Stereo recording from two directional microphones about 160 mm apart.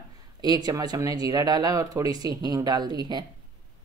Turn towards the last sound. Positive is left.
turn(degrees=-25)  # may be behind; listen again after turning